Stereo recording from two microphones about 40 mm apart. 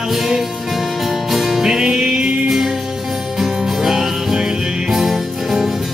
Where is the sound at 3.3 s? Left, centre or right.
Centre.